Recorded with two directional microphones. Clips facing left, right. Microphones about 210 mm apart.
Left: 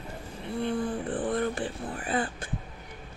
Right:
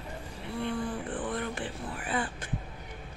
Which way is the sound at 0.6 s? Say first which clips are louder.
Left 3 dB; 40° left (ahead or behind).